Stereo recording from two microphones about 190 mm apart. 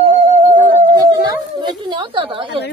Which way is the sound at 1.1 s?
20° right (ahead or behind).